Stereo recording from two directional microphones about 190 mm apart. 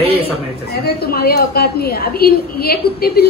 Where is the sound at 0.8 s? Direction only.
55° left (ahead or behind).